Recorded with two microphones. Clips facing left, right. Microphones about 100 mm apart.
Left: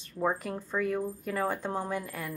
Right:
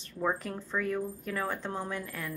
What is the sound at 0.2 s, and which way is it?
A woman's voice, 15° left (ahead or behind).